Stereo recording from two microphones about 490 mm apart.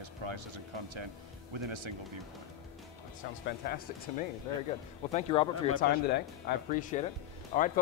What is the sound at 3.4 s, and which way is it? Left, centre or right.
Speech, centre.